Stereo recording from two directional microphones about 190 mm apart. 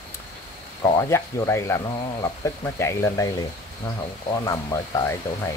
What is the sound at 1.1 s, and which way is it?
Speech, 15° left (ahead or behind).